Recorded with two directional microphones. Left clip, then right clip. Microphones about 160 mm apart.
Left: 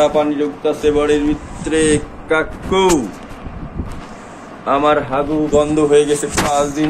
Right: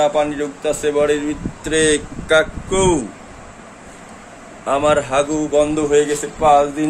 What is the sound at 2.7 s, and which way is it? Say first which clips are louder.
Speech: left 3 dB; 20° right (ahead or behind).